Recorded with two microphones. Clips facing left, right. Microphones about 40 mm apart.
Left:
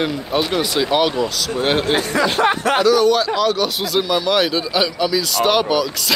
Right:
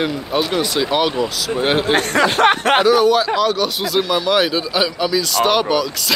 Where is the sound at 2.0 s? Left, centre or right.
Right.